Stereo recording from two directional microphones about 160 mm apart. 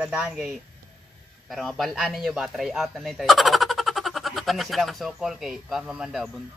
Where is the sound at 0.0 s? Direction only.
5° right (ahead or behind).